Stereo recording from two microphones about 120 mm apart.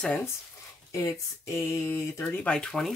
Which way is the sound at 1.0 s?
25° left (ahead or behind).